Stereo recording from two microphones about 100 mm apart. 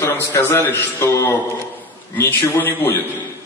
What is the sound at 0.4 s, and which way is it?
A man's voice, 20° left (ahead or behind).